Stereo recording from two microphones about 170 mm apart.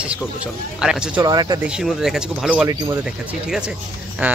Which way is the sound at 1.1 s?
25° right (ahead or behind).